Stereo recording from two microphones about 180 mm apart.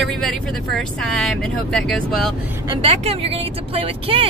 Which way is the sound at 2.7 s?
35° right (ahead or behind).